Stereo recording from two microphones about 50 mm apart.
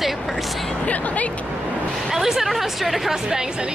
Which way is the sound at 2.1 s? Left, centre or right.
Centre.